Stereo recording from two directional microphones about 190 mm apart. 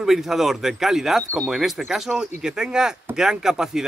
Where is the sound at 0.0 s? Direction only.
Centre (ahead or behind).